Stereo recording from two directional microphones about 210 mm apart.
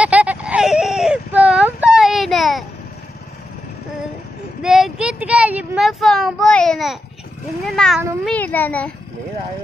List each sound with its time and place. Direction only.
0.0 s whimper: 5° right (ahead or behind)
4.6 s a child's voice: centre (ahead or behind)